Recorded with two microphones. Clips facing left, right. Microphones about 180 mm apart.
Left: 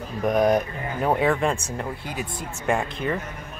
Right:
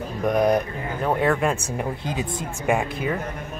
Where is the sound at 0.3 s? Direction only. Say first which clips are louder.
Even; centre (ahead or behind).